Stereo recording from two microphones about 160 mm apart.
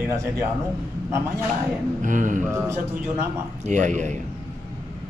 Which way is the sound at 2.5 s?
15° right (ahead or behind).